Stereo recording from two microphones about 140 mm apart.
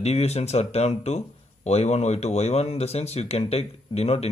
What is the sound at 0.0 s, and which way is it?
Speech, 50° left (ahead or behind).